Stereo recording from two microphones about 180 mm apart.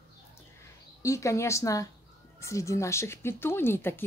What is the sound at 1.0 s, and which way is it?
Speech, 15° left (ahead or behind).